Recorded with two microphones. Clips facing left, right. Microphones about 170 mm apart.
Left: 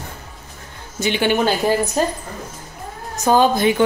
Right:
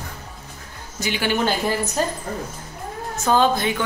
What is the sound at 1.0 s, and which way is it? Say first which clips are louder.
Speech: left 5 dB; 25° left (ahead or behind).